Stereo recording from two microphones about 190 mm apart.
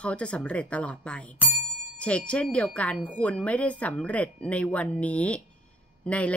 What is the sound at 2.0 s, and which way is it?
Speech, 5° left (ahead or behind).